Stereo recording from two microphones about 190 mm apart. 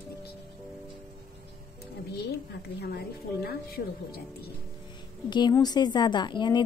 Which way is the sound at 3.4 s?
55° left (ahead or behind).